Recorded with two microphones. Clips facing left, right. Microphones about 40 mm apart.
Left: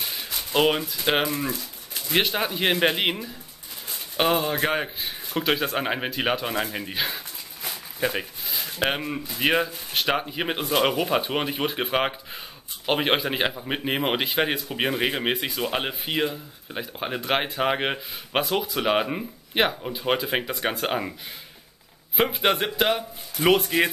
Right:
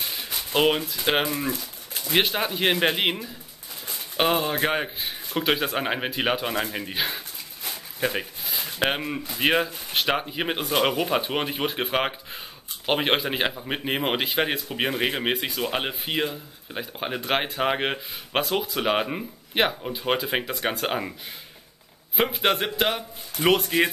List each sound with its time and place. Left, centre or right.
0.0 s a sound: centre
2.1 s speech: centre
7.6 s a sound: centre
9.4 s speech: centre
9.9 s speech: centre
22.1 s speech: centre